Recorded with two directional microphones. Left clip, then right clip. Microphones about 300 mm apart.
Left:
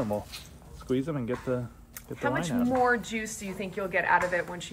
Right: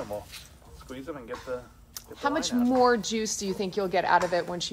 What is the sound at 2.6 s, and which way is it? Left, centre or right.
A woman's voice, centre.